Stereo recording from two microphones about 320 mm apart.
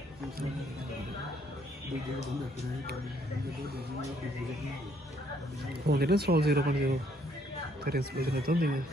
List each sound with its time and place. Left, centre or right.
5.9 s speech: right